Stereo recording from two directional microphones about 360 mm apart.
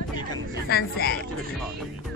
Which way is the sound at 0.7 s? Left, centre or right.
Left.